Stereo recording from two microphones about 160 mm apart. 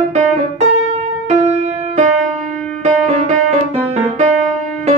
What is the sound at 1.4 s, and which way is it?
Music, 45° right (ahead or behind).